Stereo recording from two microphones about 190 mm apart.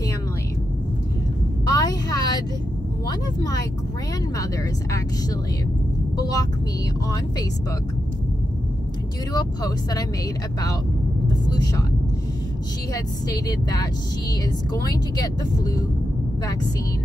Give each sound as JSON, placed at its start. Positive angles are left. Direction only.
{"t": 1.7, "sound": "a sound", "side_deg": 20}
{"t": 6.1, "sound": "speech", "side_deg": 20}
{"t": 9.3, "sound": "speech", "side_deg": 20}
{"t": 11.4, "sound": "vehicle", "side_deg": 20}
{"t": 12.9, "sound": "speech", "side_deg": 20}